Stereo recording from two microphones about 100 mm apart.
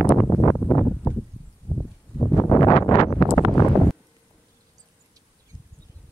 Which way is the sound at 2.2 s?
25° left (ahead or behind).